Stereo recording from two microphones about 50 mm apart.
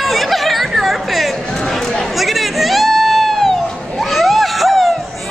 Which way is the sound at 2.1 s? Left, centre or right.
Centre.